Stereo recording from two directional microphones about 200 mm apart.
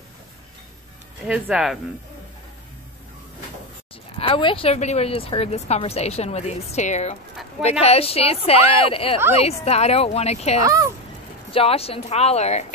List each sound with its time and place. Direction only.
1.2 s speech: 5° right (ahead or behind)
4.2 s speech: 25° left (ahead or behind)